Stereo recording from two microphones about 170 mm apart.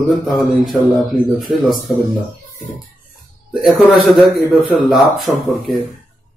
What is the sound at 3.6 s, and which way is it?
Speech, centre (ahead or behind).